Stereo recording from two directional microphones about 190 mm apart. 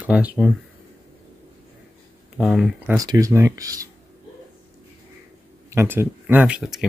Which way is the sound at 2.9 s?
20° right (ahead or behind).